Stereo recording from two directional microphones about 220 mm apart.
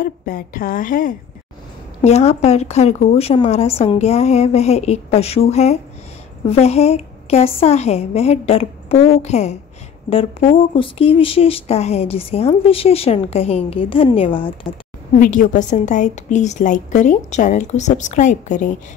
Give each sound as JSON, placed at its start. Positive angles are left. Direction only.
{"t": 0.0, "sound": "a woman's voice", "side_deg": 40}
{"t": 15.1, "sound": "a woman's voice", "side_deg": 35}